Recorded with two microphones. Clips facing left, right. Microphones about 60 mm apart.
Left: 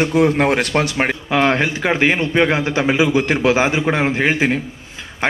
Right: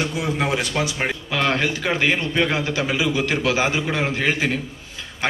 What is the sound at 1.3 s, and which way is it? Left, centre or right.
Speech, left.